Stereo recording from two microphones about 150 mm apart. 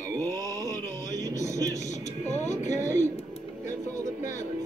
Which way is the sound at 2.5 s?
20° right (ahead or behind).